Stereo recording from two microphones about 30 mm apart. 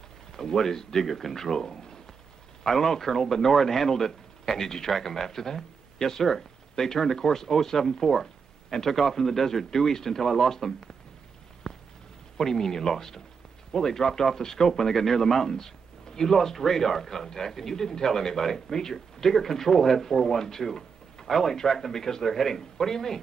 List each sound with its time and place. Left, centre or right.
0.3 s speech: centre
11.6 s a sound: centre
12.4 s speech: centre